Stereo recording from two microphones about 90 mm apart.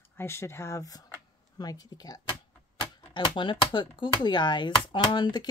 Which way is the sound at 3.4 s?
65° left (ahead or behind).